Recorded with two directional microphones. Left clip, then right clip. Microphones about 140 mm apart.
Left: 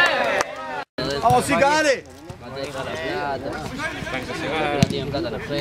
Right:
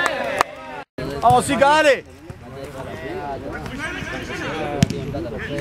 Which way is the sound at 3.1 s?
40° left (ahead or behind).